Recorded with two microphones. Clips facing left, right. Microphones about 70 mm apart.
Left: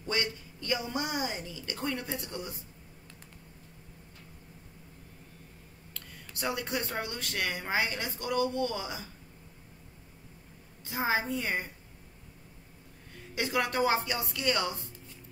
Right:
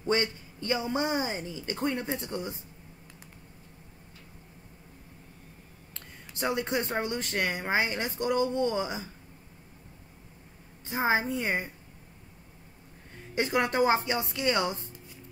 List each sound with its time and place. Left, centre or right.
0.0 s speech: right
5.9 s speech: right
10.9 s speech: right
13.3 s speech: right